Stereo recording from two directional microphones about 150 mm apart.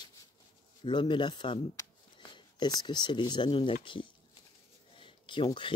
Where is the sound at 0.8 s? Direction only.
30° left (ahead or behind).